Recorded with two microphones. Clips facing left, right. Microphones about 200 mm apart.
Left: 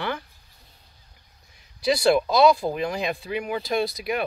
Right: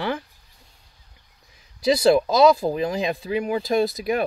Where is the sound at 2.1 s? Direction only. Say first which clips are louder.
Right 2 dB; 35° right (ahead or behind).